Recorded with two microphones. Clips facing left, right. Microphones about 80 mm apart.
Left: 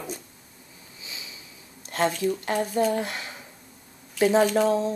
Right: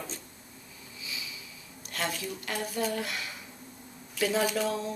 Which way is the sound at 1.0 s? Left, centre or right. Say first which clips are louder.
Right 1 dB; left.